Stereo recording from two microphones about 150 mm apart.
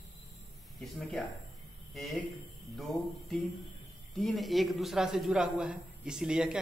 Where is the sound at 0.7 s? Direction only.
Centre (ahead or behind).